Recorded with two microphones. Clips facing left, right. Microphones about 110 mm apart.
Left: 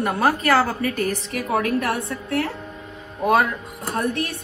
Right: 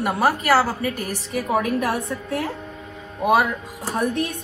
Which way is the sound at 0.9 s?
30° right (ahead or behind).